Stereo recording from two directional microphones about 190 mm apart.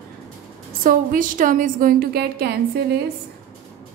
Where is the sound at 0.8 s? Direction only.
45° right (ahead or behind).